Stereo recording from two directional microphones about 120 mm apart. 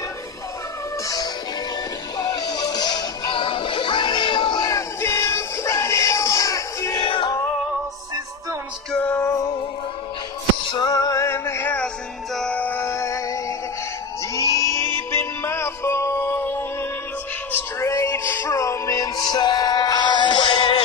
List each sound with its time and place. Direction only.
1.0 s music: 30° left (ahead or behind)
4.6 s music: 25° left (ahead or behind)
7.0 s music: 45° left (ahead or behind)
8.9 s music: 15° left (ahead or behind)
10.7 s music: 35° left (ahead or behind)
14.3 s a sound: 25° left (ahead or behind)
15.0 s music: 20° left (ahead or behind); by 20.8 s 40° left (ahead or behind)